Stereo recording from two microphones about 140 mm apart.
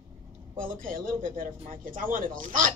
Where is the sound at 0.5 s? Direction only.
80° right.